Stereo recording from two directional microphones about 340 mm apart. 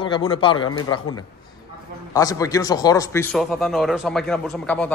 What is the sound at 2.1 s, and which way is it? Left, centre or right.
A man's voice, centre.